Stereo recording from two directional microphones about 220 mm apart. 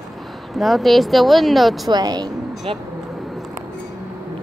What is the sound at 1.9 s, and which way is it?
Speech, 20° right (ahead or behind).